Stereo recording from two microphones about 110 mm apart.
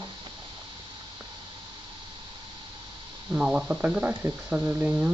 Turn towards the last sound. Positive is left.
turn(degrees=-15)  # may be behind; listen again after turning